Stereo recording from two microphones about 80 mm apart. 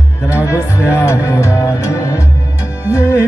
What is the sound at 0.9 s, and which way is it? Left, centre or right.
Music, left.